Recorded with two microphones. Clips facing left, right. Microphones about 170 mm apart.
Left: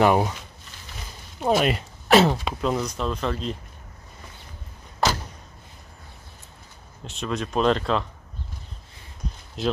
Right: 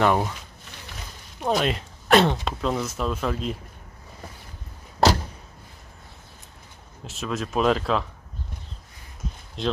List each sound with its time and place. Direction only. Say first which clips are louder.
0.0 s speech: left 2 dB; 10° left (ahead or behind)
1.4 s speech: left 2 dB; 5° left (ahead or behind)
7.1 s speech: left 1 dB; centre (ahead or behind)
9.6 s speech: left 1 dB; centre (ahead or behind)